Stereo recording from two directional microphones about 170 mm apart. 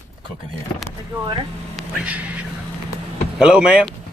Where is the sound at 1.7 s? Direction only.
5° right (ahead or behind).